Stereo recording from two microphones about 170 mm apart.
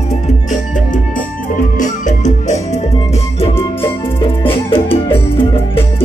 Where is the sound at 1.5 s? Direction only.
50° left (ahead or behind).